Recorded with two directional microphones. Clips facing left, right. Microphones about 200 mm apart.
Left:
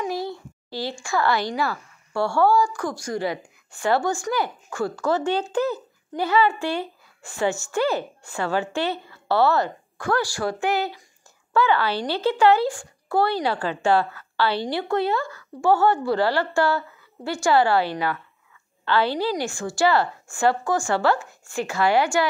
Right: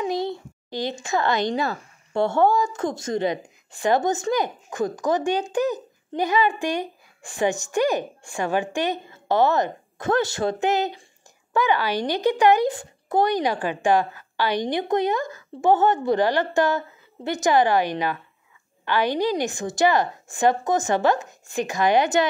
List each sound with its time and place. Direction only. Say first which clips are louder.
0.0 s a woman's voice: right 2 dB; 20° right (ahead or behind)